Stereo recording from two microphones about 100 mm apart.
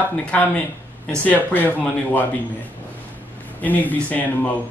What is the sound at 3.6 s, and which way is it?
Speech, 15° left (ahead or behind).